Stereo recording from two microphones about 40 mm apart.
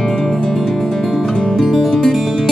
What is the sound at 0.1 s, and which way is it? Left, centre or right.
Music, centre.